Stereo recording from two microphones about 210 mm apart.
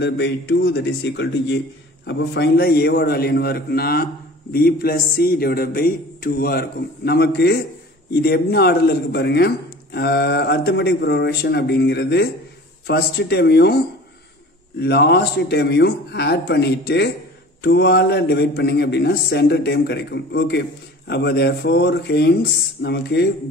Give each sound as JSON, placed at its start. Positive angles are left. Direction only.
{"t": 0.0, "sound": "a man's voice", "side_deg": 55}